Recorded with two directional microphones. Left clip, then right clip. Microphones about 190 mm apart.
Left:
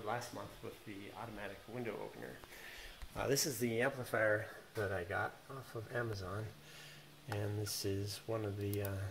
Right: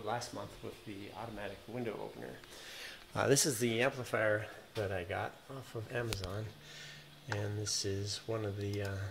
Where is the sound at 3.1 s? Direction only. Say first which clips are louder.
Right 6 dB; 45° right (ahead or behind); by 3.9 s 30° right (ahead or behind).